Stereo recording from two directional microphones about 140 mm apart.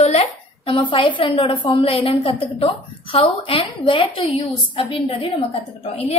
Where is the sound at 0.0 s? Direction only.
45° left (ahead or behind).